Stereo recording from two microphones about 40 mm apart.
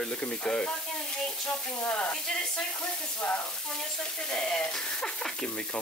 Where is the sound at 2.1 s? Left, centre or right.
Centre.